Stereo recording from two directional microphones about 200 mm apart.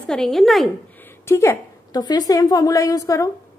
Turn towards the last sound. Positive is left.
turn(degrees=15)  # may be behind; listen again after turning